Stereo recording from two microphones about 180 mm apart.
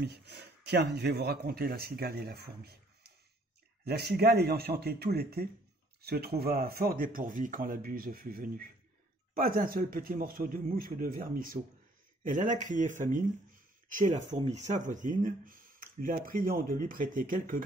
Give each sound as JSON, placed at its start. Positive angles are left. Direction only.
{"t": 0.0, "sound": "speech", "side_deg": -65}